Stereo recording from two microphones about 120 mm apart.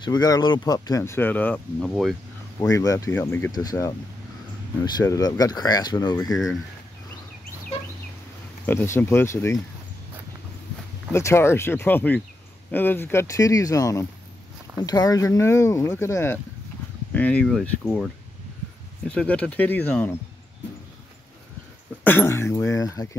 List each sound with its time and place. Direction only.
0.0 s speech: 35° left (ahead or behind); by 2.1 s 5° left (ahead or behind)
2.7 s speech: 30° left (ahead or behind)
3.2 s speech: 15° left (ahead or behind)
5.0 s speech: 30° left (ahead or behind)
6.3 s speech: centre (ahead or behind)
8.6 s speech: 20° left (ahead or behind)
11.1 s speech: 20° left (ahead or behind)
22.0 s speech: 20° left (ahead or behind)